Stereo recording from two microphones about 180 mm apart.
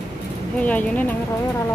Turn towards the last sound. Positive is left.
turn(degrees=10)  # may be behind; listen again after turning